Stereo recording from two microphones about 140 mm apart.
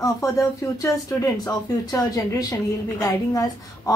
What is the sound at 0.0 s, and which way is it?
Speech, 25° left (ahead or behind).